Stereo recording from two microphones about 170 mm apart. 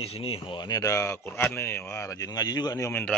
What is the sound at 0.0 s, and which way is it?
Speech, 35° left (ahead or behind).